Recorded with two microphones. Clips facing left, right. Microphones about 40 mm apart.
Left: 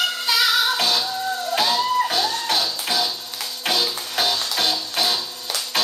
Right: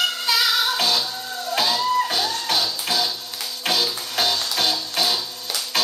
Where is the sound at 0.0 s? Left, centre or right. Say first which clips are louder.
Left 1 dB; centre.